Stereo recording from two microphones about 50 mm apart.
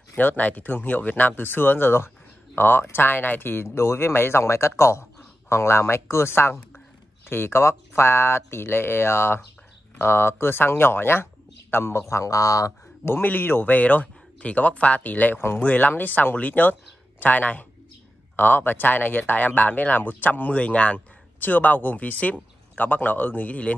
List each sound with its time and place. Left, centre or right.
0.1 s speech: left
0.4 s speech: left
3.6 s speech: left
12.1 s speech: left
13.1 s speech: left
13.7 s speech: left